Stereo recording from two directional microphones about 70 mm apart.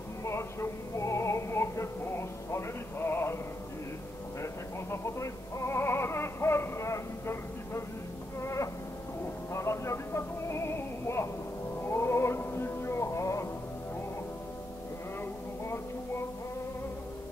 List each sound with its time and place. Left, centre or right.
0.2 s music: left
4.9 s music: left
8.4 s a sound: left
9.5 s music: left